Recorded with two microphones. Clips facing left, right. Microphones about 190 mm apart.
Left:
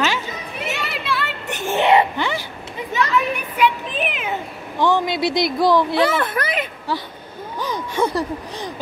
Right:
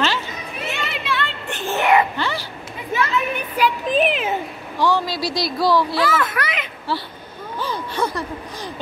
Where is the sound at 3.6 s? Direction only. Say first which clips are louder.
Right 3 dB; 35° right (ahead or behind).